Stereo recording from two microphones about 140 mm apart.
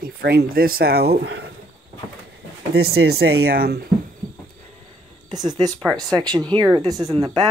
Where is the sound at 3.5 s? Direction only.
90° right.